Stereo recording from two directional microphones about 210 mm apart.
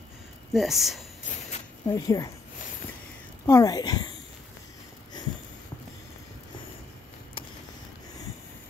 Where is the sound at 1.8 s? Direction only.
15° left (ahead or behind).